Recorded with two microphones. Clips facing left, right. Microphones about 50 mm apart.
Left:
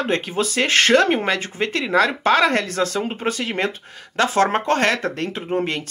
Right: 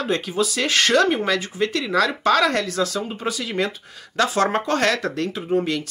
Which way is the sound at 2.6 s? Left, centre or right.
Left.